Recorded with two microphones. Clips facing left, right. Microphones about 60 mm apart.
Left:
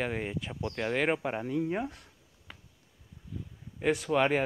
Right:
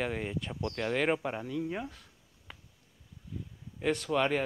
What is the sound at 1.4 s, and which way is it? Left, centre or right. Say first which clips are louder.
Speech: left 4 dB; left.